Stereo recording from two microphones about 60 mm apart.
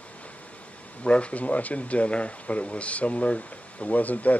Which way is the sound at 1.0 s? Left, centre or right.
Centre.